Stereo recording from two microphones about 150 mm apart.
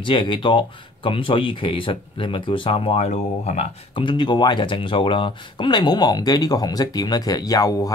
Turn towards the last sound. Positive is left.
turn(degrees=25)  # may be behind; listen again after turning